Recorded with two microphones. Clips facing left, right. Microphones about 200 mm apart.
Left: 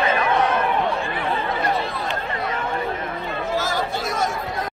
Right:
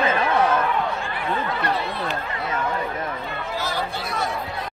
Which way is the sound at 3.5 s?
45° left (ahead or behind).